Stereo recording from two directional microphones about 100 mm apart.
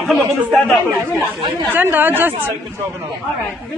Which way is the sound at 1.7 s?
20° right (ahead or behind).